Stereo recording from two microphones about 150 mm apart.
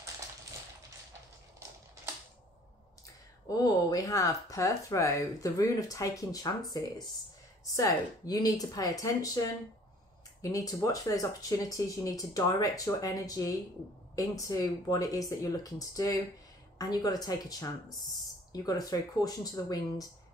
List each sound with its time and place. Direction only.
3.4 s speech: 25° left (ahead or behind)
7.7 s speech: 25° left (ahead or behind)